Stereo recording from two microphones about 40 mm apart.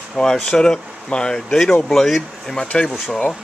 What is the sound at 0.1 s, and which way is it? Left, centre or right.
Speech, centre.